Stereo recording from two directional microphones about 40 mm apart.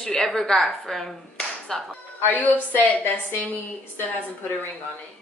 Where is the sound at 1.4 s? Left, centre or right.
Centre.